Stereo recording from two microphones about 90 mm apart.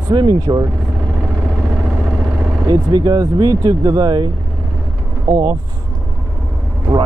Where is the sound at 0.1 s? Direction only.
45° right (ahead or behind).